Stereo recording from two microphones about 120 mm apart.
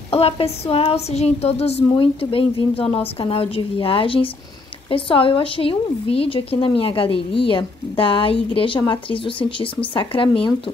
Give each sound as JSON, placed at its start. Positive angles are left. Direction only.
{"t": 0.1, "sound": "a woman's voice", "side_deg": 55}